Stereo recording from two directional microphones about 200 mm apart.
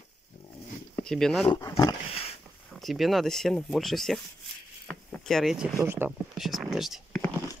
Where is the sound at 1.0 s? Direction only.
Centre (ahead or behind).